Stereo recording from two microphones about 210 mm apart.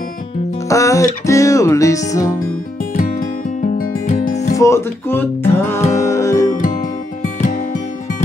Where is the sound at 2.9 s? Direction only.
40° left (ahead or behind).